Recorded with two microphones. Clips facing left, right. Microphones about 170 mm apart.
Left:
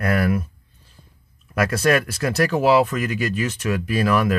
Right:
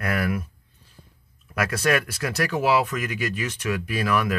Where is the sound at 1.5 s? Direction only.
30° left (ahead or behind).